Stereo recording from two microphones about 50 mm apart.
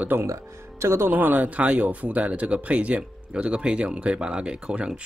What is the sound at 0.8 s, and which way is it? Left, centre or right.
Speech, right.